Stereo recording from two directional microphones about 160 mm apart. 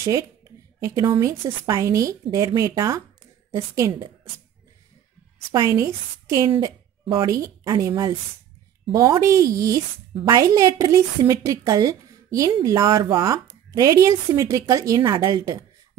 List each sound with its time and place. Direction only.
0.0 s a woman's voice: 15° right (ahead or behind)
5.5 s a woman's voice: 20° right (ahead or behind)